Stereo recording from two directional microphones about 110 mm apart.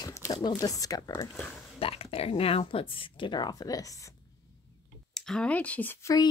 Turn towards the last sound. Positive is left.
turn(degrees=20)  # may be behind; listen again after turning